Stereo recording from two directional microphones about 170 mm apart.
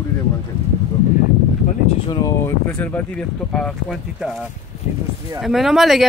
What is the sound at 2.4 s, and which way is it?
Speech, 10° left (ahead or behind).